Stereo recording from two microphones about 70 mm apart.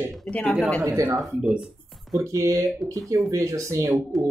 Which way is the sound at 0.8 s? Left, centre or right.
Right.